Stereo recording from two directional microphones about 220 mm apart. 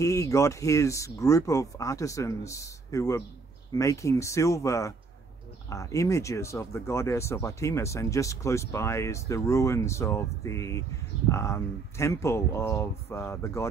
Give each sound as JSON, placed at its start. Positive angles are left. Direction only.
{"t": 0.0, "sound": "speech", "side_deg": 15}